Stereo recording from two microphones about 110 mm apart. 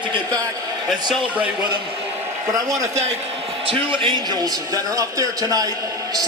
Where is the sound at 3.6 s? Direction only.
50° right (ahead or behind).